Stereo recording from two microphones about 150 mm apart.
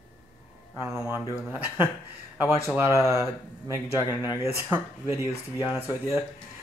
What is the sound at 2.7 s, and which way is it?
Speech, 20° right (ahead or behind).